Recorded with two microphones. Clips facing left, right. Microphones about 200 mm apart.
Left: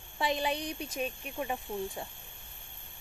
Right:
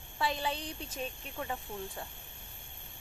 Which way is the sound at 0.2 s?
15° left (ahead or behind).